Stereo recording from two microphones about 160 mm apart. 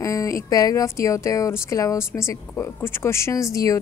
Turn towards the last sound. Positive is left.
turn(degrees=20)  # may be behind; listen again after turning